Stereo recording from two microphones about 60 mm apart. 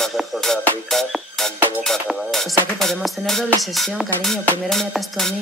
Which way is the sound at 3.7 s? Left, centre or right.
Centre.